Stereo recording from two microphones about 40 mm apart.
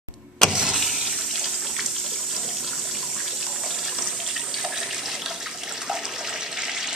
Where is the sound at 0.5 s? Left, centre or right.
Centre.